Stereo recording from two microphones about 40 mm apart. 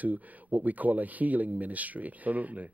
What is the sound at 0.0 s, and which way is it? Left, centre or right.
Speech, right.